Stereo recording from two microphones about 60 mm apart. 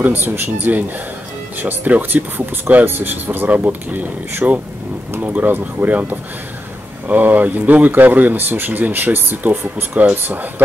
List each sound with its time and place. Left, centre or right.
0.0 s speech: right